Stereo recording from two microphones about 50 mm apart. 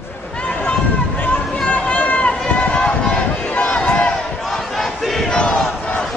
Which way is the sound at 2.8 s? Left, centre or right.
Left.